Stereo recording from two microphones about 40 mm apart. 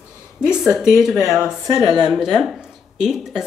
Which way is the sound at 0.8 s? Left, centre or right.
Centre.